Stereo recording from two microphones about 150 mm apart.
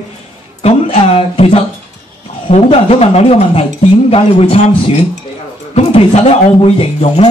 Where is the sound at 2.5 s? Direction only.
45° left (ahead or behind).